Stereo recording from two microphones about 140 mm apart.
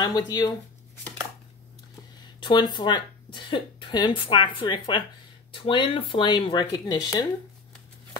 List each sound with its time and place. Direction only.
0.0 s speech: 30° left (ahead or behind)
2.4 s speech: 35° left (ahead or behind)